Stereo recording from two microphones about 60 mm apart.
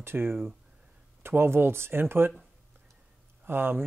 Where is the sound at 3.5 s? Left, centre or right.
Right.